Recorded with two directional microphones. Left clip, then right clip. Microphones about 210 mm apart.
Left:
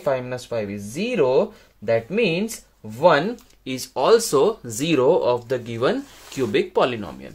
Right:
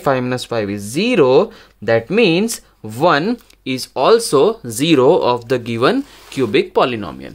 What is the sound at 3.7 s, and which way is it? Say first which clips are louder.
Speech: right 5 dB; 20° right (ahead or behind).